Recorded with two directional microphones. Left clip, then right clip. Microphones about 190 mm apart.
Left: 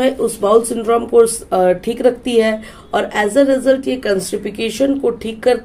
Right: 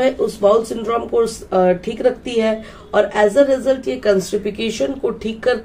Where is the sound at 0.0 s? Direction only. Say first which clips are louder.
Even; 30° left (ahead or behind).